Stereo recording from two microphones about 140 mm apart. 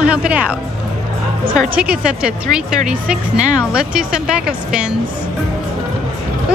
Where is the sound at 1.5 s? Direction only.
5° right (ahead or behind).